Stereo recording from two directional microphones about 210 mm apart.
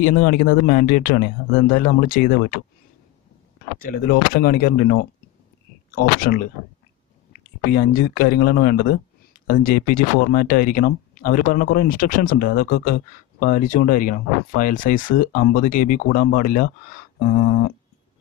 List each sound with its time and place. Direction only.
0.0 s speech: 45° left (ahead or behind)
3.7 s speech: 45° left (ahead or behind)
7.7 s speech: 45° left (ahead or behind)
17.2 s a sound: 45° left (ahead or behind)